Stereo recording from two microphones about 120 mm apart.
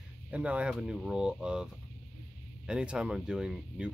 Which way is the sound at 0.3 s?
10° right (ahead or behind).